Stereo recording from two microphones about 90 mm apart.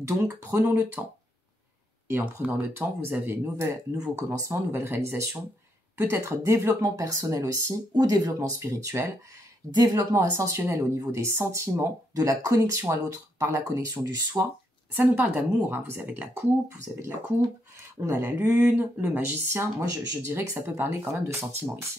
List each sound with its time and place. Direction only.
0.0 s speech: 30° right (ahead or behind)
2.3 s speech: 25° right (ahead or behind)
3.9 s speech: 40° right (ahead or behind)
9.8 s speech: 40° right (ahead or behind)
15.0 s speech: 20° right (ahead or behind)
18.0 s speech: 30° right (ahead or behind)